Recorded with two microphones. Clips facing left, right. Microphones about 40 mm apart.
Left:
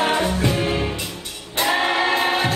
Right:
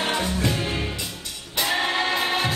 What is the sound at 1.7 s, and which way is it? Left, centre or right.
Choir, centre.